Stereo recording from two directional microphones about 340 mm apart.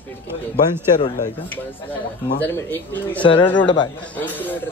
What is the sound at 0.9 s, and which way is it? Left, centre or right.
Speech, left.